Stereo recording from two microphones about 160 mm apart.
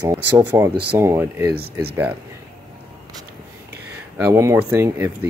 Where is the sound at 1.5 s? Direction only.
80° right.